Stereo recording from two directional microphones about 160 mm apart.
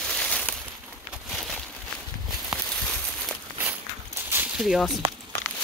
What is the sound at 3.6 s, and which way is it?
Walk, 15° right (ahead or behind).